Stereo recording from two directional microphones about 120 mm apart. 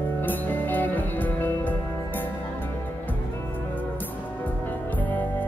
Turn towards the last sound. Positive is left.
turn(degrees=15)  # may be behind; listen again after turning